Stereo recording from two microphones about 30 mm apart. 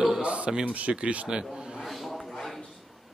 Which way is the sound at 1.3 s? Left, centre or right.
Right.